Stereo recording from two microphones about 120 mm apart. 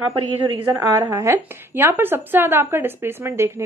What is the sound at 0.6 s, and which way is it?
Speech, 20° right (ahead or behind).